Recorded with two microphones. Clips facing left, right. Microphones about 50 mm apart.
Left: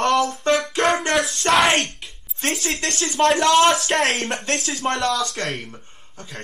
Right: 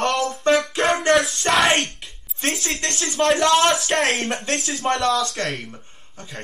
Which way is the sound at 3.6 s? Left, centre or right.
Centre.